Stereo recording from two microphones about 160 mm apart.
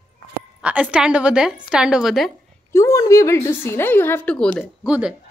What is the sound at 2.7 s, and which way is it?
Speech, 20° left (ahead or behind).